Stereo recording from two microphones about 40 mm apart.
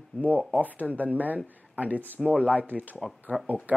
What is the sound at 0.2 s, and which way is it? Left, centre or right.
Speech, right.